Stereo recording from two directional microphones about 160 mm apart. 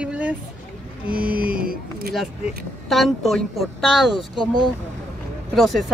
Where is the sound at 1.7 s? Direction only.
75° right (ahead or behind).